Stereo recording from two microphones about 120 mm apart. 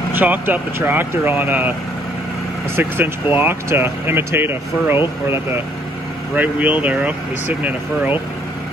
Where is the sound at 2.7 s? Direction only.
15° right (ahead or behind).